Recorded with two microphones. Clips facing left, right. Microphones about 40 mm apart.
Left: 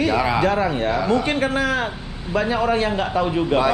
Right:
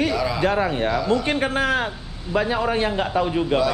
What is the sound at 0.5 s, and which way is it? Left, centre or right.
Speech, centre.